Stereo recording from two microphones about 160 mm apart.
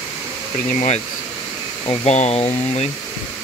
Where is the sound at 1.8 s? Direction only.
45° left (ahead or behind).